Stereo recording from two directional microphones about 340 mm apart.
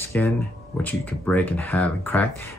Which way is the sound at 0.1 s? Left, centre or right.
Centre.